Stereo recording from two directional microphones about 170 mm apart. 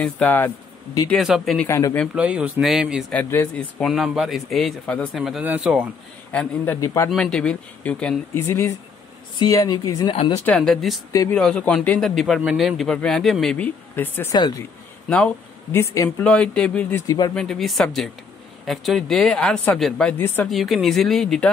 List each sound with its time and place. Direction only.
0.0 s speech: 10° left (ahead or behind)
1.7 s speech: 15° left (ahead or behind)
2.1 s a man's voice: 5° right (ahead or behind)
3.1 s speech: 10° left (ahead or behind); by 5.9 s 5° right (ahead or behind)
6.3 s speech: 10° left (ahead or behind)
7.1 s speech: 5° left (ahead or behind); by 10.1 s 20° left (ahead or behind)
10.1 s speech: 35° left (ahead or behind)
10.4 s speech: 5° left (ahead or behind)
15.7 s speech: 15° left (ahead or behind)
16.3 s speech: 5° left (ahead or behind)